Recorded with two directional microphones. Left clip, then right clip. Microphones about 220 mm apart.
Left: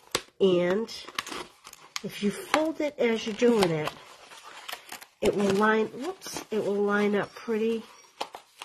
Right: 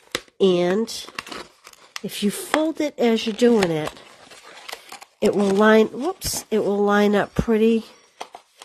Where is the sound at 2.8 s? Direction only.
45° right (ahead or behind).